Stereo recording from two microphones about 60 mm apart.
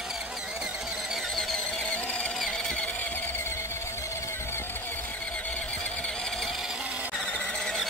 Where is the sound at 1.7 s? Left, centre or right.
Centre.